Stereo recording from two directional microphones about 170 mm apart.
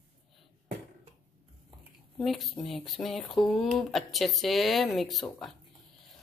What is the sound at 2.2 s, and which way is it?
Speech, centre (ahead or behind).